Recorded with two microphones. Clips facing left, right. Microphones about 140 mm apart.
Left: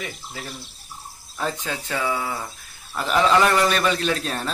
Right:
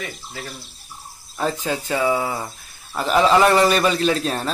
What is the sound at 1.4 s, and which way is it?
A man's voice, 5° right (ahead or behind).